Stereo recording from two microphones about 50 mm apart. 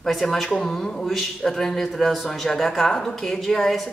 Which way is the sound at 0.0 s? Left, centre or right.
Centre.